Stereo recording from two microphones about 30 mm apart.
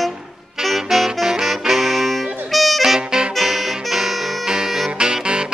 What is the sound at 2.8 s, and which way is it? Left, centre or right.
Saxophone, centre.